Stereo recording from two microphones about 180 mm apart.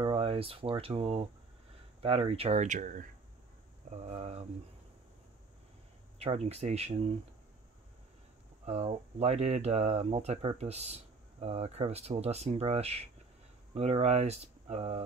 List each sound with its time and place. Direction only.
0.0 s speech: 30° right (ahead or behind)
6.1 s speech: 35° right (ahead or behind)
8.6 s speech: 35° right (ahead or behind)